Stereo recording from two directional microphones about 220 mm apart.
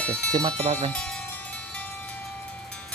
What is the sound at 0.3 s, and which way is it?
Speech, 20° right (ahead or behind).